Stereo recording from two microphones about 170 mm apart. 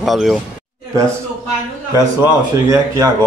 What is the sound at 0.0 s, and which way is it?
Speech, centre (ahead or behind).